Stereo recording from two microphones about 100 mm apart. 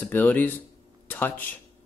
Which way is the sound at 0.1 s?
15° left (ahead or behind).